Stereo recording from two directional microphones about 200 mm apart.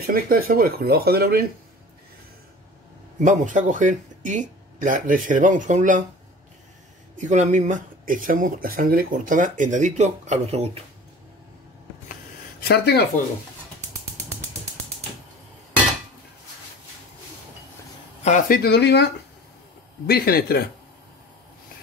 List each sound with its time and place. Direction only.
0.0 s speech: 45° right (ahead or behind)
3.2 s speech: 40° right (ahead or behind)
7.2 s speech: 35° right (ahead or behind)
12.6 s speech: 55° left (ahead or behind)
18.2 s speech: 40° left (ahead or behind)